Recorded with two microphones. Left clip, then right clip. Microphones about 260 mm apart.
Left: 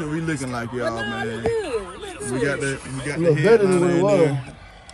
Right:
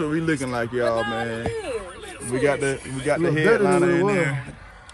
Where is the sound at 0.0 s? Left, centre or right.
Centre.